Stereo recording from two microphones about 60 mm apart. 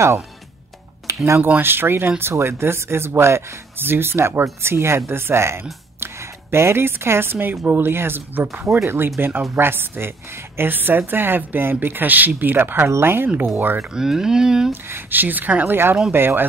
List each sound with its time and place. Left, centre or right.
1.0 s a sound: right
1.4 s speech: right
13.7 s speech: centre
14.7 s speech: right